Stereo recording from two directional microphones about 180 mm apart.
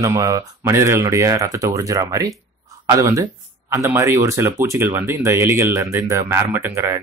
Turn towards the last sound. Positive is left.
turn(degrees=-15)  # may be behind; listen again after turning